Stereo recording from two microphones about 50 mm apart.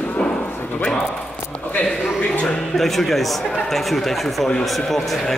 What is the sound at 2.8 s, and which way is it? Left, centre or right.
A man's voice, centre.